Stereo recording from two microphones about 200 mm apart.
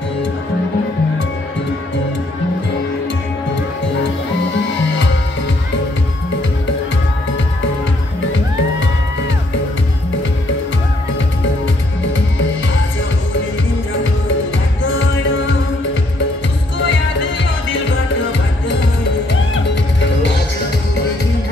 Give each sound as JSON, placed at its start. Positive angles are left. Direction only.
{"t": 14.8, "sound": "music", "side_deg": 75}
{"t": 16.7, "sound": "music", "side_deg": 70}
{"t": 19.5, "sound": "music", "side_deg": 65}